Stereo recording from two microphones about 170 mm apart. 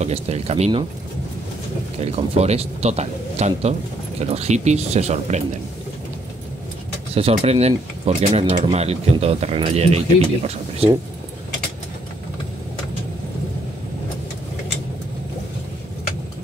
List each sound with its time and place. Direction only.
0.0 s speech: 40° right (ahead or behind)
2.0 s speech: 40° right (ahead or behind)
7.2 s speech: 35° right (ahead or behind)